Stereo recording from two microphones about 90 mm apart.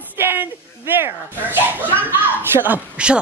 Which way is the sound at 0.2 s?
20° right (ahead or behind).